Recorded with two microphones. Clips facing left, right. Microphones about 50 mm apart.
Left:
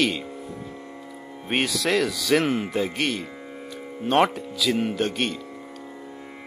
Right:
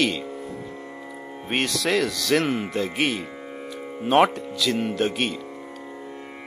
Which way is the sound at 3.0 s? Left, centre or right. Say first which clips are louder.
Right 2 dB; centre.